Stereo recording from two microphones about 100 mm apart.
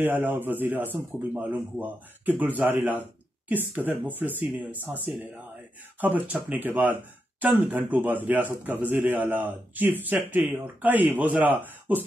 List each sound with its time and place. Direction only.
0.0 s a man's voice: 20° right (ahead or behind)
5.9 s speech: 15° right (ahead or behind)